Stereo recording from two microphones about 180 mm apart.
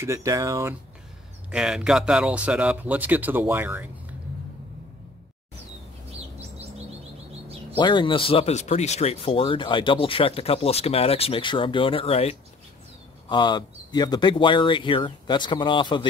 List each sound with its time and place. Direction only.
0.0 s speech: 15° right (ahead or behind)
1.5 s speech: 5° right (ahead or behind)
7.7 s speech: 25° left (ahead or behind)